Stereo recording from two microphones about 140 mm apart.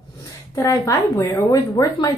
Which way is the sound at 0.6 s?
20° left (ahead or behind).